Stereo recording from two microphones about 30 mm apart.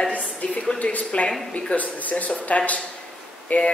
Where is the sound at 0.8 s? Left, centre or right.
Left.